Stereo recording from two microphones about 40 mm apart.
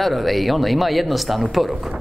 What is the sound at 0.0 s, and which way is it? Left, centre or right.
Speech, centre.